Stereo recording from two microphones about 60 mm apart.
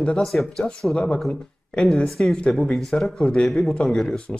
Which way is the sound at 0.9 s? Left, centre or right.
Centre.